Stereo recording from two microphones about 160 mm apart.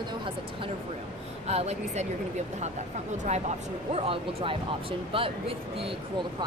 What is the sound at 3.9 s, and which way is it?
Speech, 40° right (ahead or behind).